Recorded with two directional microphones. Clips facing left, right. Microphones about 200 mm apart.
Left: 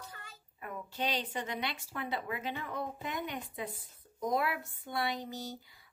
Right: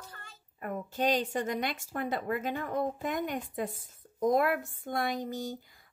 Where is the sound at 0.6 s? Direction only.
45° right (ahead or behind).